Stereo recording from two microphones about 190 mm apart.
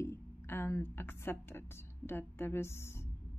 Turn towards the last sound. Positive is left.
turn(degrees=15)  # may be behind; listen again after turning